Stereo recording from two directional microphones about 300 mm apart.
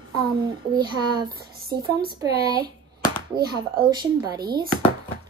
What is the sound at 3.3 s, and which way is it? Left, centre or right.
Speech, centre.